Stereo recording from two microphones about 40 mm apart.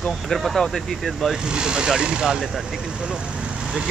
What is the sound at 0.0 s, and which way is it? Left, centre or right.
Speech, centre.